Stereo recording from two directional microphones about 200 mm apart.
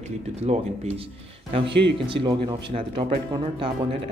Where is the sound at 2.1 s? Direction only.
25° right (ahead or behind).